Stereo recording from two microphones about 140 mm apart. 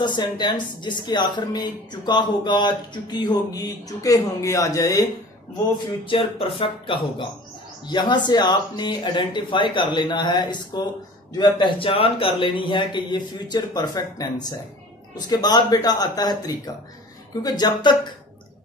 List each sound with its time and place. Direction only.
0.0 s speech: 35° left (ahead or behind)
6.0 s speech: 40° left (ahead or behind)